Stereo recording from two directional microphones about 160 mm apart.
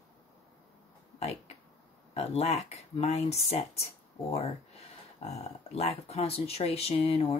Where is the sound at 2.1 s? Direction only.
40° left (ahead or behind).